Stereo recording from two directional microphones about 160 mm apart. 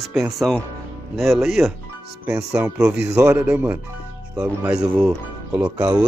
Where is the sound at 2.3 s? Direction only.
15° right (ahead or behind).